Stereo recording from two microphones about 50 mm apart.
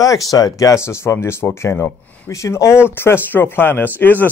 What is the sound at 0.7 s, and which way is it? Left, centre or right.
Speech, left.